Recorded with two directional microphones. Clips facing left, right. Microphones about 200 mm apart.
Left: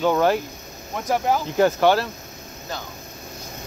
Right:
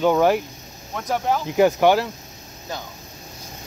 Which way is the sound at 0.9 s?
5° left (ahead or behind).